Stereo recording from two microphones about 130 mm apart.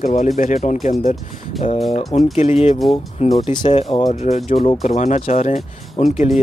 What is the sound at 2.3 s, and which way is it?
Speech, 55° left (ahead or behind).